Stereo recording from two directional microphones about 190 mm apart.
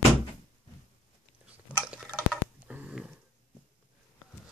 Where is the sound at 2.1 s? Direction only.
5° right (ahead or behind).